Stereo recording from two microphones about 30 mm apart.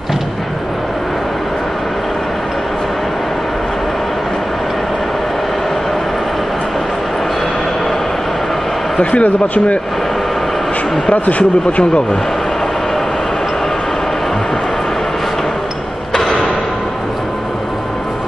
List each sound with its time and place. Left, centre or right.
9.0 s speech: left
11.2 s speech: left